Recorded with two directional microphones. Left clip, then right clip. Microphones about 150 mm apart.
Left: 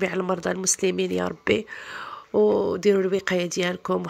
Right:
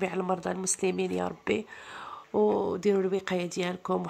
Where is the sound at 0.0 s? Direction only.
20° left (ahead or behind).